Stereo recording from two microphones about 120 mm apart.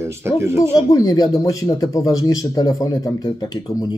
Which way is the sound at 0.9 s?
30° left (ahead or behind).